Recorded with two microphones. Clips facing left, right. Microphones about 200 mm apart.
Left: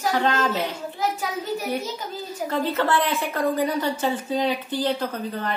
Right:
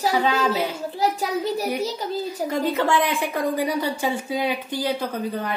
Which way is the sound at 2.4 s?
15° right (ahead or behind).